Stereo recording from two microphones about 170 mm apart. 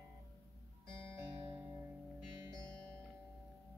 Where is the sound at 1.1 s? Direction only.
15° right (ahead or behind).